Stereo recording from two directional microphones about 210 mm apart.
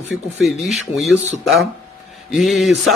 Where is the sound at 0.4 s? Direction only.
Centre (ahead or behind).